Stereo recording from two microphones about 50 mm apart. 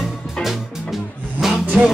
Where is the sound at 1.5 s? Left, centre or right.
Right.